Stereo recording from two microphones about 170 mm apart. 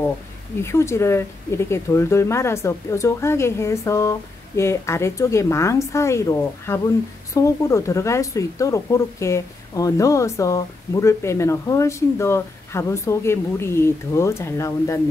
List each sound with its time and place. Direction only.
0.6 s speech: 15° left (ahead or behind)